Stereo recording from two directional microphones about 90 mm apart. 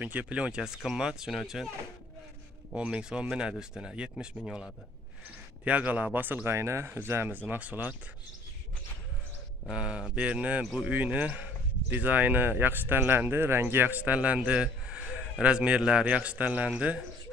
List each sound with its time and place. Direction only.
0.0 s speech: 15° right (ahead or behind); by 1.7 s centre (ahead or behind)
2.7 s speech: 10° right (ahead or behind)
5.6 s speech: 15° right (ahead or behind)
9.7 s speech: 10° right (ahead or behind)